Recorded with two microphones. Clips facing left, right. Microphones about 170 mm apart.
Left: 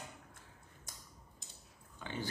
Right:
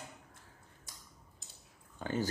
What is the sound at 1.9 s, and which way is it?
Speech, 45° right (ahead or behind).